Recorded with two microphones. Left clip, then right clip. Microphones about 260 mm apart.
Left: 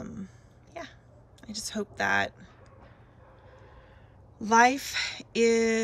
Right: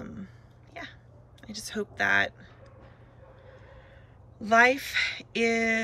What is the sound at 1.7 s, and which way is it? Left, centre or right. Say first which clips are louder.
Speech: right 2 dB; centre.